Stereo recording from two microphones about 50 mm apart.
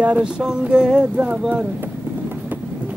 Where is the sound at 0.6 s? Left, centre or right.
Centre.